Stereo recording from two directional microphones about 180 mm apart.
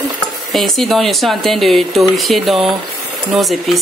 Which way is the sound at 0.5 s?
Centre (ahead or behind).